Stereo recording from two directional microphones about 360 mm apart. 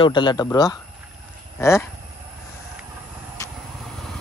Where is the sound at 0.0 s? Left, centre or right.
Centre.